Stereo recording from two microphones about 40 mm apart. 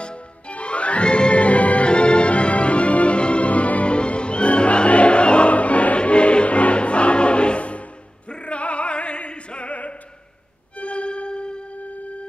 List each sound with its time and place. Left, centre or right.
0.0 s music: left
8.3 s opera: left
10.8 s violin: left